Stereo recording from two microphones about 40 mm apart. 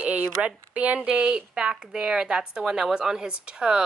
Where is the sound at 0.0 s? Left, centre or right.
Right.